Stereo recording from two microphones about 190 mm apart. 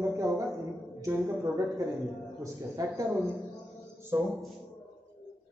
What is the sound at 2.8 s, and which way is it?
Speech, 20° right (ahead or behind).